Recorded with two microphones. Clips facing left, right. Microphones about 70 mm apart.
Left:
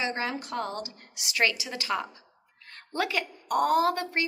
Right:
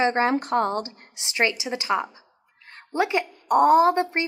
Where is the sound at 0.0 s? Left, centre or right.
Right.